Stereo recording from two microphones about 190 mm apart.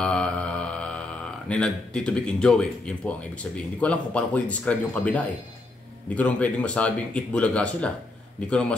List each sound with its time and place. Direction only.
0.0 s a man's voice: 5° left (ahead or behind)